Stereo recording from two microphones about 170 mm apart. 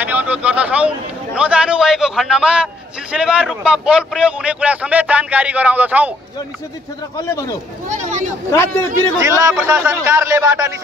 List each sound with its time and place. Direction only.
0.0 s speech: 10° right (ahead or behind)
7.2 s speech: 20° left (ahead or behind)
7.9 s a sound: 50° right (ahead or behind)
8.5 s a man's voice: 15° left (ahead or behind)
9.2 s speech: 15° right (ahead or behind)